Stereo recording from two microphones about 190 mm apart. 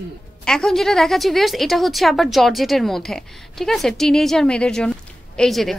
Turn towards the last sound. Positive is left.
turn(degrees=0)  # may be behind; listen again after turning